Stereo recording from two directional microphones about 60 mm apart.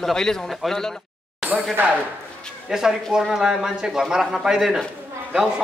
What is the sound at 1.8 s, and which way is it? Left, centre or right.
Speech, right.